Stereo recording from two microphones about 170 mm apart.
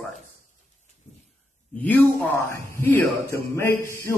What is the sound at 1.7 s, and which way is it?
A man's voice, 10° left (ahead or behind).